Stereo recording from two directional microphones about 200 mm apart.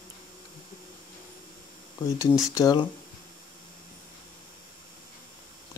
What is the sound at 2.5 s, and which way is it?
Speech, 20° left (ahead or behind).